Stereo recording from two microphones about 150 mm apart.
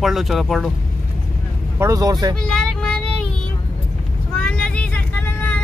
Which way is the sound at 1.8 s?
25° right (ahead or behind).